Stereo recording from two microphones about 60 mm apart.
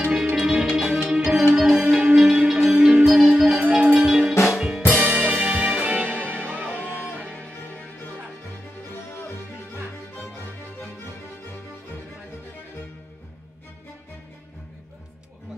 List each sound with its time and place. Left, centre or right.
0.0 s music: centre
4.9 s music: right
6.9 s music: left
11.0 s music: left